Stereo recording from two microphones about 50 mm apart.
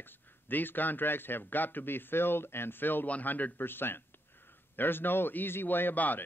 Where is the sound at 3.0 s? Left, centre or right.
Left.